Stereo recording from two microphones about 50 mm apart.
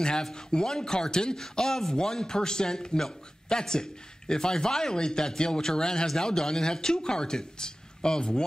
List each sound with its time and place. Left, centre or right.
0.0 s a man's voice: centre